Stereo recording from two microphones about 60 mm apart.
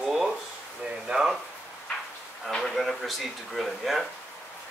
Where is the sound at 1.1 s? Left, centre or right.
Right.